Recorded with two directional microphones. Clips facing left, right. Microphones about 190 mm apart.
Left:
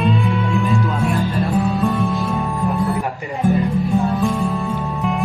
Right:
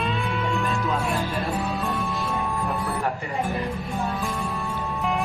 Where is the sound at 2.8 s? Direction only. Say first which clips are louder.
Left 6 dB; 15° left (ahead or behind).